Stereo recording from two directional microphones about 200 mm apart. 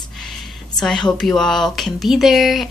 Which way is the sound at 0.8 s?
5° left (ahead or behind).